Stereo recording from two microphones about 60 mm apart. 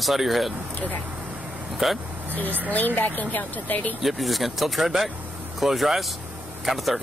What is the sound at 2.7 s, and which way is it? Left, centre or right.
Speech, left.